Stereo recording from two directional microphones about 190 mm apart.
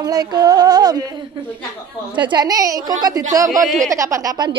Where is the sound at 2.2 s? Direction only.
25° right (ahead or behind).